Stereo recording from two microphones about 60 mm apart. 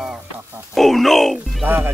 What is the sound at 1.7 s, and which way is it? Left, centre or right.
Speech, right.